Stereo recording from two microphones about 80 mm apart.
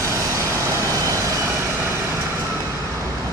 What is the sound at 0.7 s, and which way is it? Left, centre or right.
Vehicle, right.